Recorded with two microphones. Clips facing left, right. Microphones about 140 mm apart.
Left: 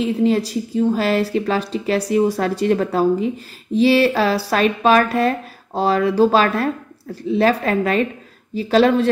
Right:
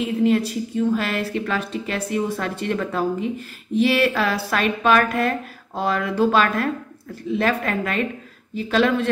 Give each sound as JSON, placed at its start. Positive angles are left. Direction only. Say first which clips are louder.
{"t": 0.2, "sound": "a woman's voice", "louder": "right 2 dB", "side_deg": 35}